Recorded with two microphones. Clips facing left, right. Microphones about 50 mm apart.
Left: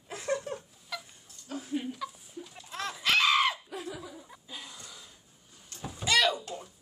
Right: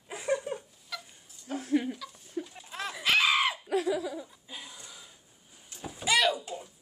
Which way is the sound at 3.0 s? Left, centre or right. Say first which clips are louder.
Even; centre.